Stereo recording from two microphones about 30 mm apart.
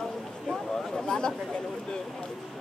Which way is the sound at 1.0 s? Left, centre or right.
Left.